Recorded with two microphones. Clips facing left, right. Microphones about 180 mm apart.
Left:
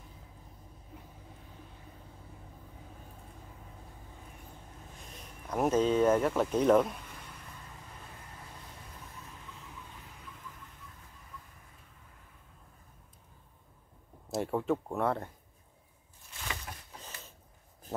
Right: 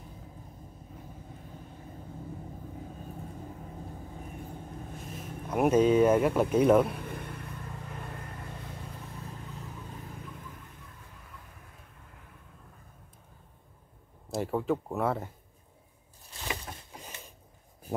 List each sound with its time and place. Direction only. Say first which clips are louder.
5.1 s speech: right 3 dB; 5° right (ahead or behind)
6.9 s vehicle: right 8 dB; 55° right (ahead or behind)
14.3 s speech: right 1 dB; centre (ahead or behind)
16.4 s a sound: right 4 dB; 15° right (ahead or behind)